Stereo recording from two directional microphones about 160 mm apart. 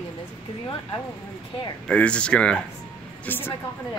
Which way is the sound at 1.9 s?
5° left (ahead or behind).